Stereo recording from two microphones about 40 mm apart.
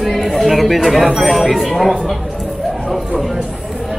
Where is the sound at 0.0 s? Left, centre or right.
Centre.